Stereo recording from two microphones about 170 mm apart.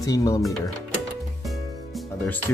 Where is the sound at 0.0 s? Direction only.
20° left (ahead or behind).